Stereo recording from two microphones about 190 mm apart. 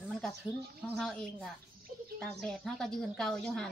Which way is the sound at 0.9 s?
Centre (ahead or behind).